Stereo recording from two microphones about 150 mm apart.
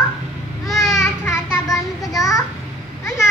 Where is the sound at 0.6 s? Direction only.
Centre (ahead or behind).